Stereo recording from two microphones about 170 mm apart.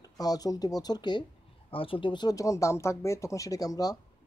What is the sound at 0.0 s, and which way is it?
Speech, 20° left (ahead or behind).